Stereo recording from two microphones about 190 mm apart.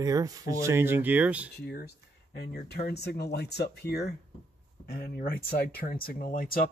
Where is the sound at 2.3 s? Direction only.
60° left (ahead or behind).